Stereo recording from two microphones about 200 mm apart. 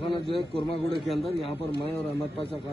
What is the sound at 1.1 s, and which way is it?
Speech, centre (ahead or behind).